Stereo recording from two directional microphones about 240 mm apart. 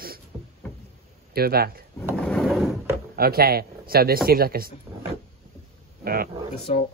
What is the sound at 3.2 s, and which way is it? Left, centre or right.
Speech, right.